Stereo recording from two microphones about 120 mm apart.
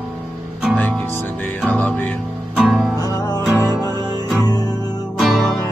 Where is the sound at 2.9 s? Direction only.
30° left (ahead or behind).